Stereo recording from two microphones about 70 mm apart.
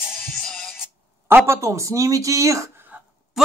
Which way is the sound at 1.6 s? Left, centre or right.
Right.